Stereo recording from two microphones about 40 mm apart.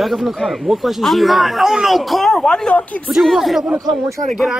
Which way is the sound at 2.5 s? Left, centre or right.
Left.